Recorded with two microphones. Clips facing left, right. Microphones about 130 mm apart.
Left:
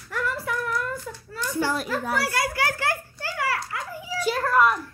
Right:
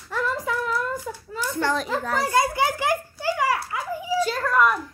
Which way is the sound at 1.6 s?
10° left (ahead or behind).